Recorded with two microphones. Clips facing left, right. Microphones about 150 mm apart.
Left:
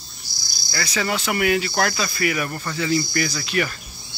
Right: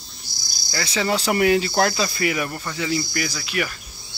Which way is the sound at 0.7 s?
25° right (ahead or behind).